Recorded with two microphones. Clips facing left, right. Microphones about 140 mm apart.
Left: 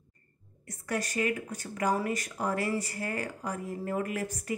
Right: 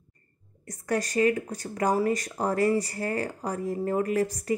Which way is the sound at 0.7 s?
40° right (ahead or behind).